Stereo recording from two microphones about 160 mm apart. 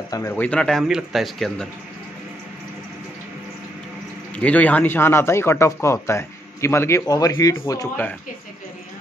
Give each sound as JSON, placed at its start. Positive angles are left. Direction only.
{"t": 0.1, "sound": "speech", "side_deg": 15}
{"t": 4.4, "sound": "speech", "side_deg": 10}